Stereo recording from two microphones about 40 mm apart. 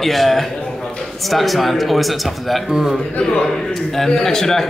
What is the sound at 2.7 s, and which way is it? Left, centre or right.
Speech, centre.